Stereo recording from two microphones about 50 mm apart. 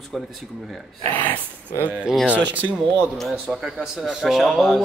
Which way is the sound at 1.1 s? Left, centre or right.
Left.